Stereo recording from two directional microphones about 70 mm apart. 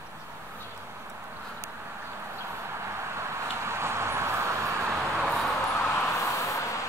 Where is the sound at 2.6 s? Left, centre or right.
Right.